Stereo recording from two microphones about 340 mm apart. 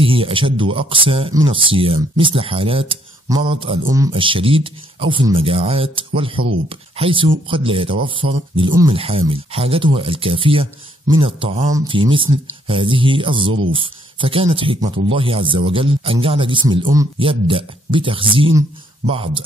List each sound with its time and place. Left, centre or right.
0.0 s speech: centre